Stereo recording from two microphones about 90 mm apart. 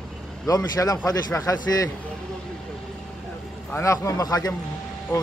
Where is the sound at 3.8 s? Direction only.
35° left (ahead or behind).